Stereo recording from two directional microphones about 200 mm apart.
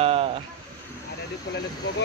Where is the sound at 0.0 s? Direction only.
30° right (ahead or behind).